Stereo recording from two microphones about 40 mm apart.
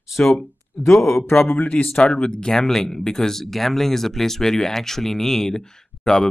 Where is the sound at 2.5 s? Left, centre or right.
Centre.